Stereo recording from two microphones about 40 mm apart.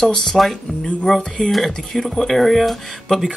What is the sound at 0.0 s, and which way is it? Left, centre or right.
Speech, centre.